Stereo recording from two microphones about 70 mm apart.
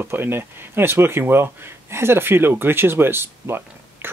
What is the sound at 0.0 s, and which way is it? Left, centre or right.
Speech, right.